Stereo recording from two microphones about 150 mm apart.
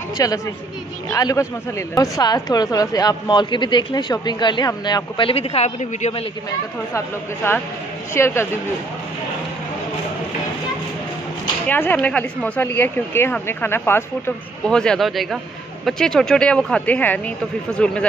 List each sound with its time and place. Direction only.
0.2 s speech: 25° left (ahead or behind); by 6.2 s 40° left (ahead or behind)
8.1 s speech: 15° left (ahead or behind)
11.6 s a woman's voice: 10° left (ahead or behind)